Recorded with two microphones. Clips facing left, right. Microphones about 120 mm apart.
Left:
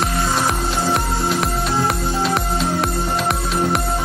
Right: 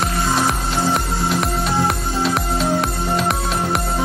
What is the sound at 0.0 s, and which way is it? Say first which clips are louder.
Music: right 1 dB; centre (ahead or behind).